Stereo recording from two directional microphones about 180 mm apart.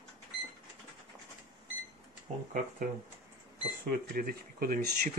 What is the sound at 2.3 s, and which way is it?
Speech, 40° right (ahead or behind).